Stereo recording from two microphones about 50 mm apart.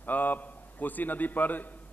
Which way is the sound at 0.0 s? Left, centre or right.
Left.